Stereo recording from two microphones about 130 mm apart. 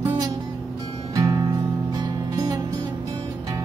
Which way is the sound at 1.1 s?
30° right (ahead or behind).